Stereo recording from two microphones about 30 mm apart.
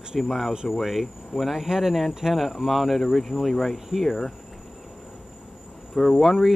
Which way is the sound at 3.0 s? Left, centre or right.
Centre.